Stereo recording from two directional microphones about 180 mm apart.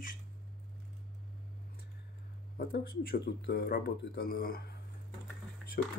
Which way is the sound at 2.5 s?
55° left (ahead or behind).